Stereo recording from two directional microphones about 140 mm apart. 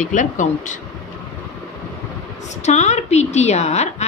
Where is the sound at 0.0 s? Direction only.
65° left (ahead or behind).